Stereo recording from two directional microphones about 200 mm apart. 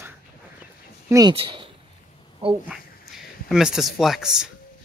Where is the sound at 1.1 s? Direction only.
25° right (ahead or behind).